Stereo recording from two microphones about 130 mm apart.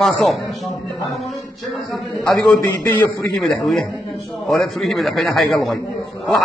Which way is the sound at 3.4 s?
Centre (ahead or behind).